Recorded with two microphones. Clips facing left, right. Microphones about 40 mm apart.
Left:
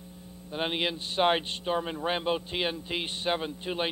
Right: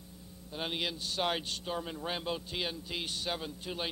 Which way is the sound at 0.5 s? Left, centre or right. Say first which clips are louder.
Left 6 dB; left.